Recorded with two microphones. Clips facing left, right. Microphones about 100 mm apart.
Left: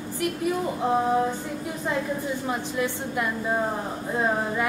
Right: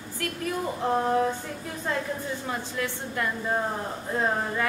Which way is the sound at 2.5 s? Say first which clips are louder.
Left 4 dB; 20° left (ahead or behind).